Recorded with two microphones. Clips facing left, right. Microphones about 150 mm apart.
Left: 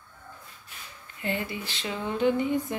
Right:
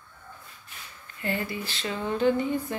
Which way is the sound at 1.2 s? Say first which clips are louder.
Right 1 dB; 15° left (ahead or behind).